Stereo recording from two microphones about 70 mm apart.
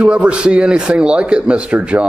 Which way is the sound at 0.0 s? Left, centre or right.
Centre.